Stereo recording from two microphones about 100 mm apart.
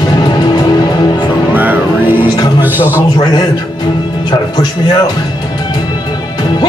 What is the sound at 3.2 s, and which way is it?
Speech, 35° left (ahead or behind).